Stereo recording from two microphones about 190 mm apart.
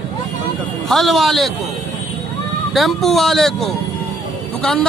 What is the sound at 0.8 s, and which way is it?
Speech, centre (ahead or behind).